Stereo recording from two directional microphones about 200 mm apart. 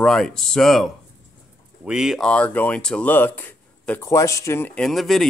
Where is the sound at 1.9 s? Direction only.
Centre (ahead or behind).